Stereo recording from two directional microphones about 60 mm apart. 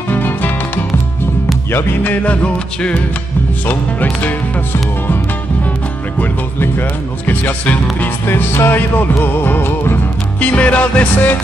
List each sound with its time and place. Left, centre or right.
0.1 s music: left
1.7 s speech: left
2.2 s music: left
6.1 s speech: left
10.4 s music: left